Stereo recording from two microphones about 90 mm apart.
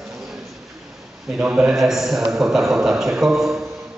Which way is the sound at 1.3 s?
15° right (ahead or behind).